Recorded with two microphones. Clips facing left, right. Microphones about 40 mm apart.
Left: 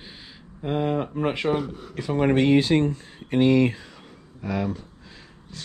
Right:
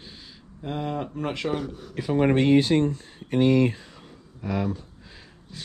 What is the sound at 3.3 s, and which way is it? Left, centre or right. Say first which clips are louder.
Speech: left 1 dB; left.